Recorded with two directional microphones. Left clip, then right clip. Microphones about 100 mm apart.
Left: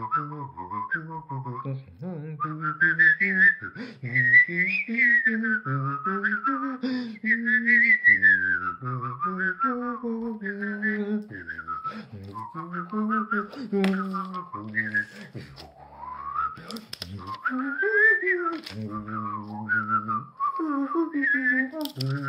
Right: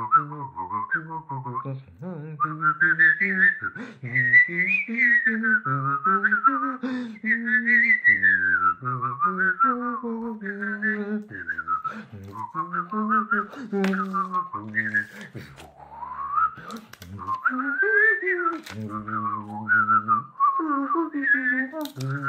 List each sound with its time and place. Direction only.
0.0 s whistling: centre (ahead or behind); by 13.4 s 20° left (ahead or behind)
13.6 s a sound: 25° left (ahead or behind)
14.2 s whistling: 5° left (ahead or behind)
14.7 s whistling: 5° right (ahead or behind)
16.2 s whistling: 20° left (ahead or behind)
20.3 s whistling: 25° left (ahead or behind)
21.9 s a sound: 20° left (ahead or behind)